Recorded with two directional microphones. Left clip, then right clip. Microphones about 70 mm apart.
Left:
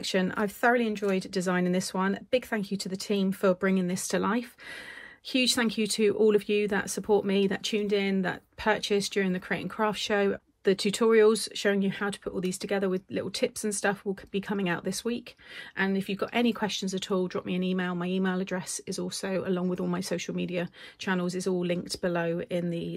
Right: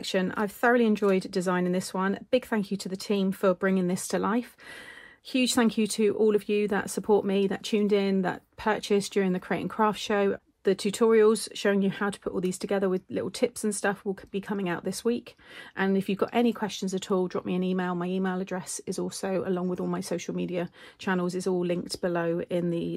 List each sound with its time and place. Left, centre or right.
0.0 s speech: centre
1.1 s speech: right
5.4 s speech: right
5.9 s speech: centre
6.6 s speech: right
16.0 s speech: right
16.3 s speech: right
18.1 s speech: centre
18.6 s speech: right